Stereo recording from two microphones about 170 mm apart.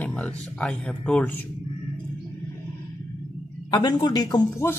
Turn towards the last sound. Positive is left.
turn(degrees=25)  # may be behind; listen again after turning